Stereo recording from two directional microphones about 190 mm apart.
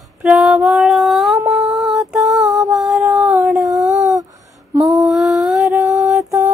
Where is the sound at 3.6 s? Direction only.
15° right (ahead or behind).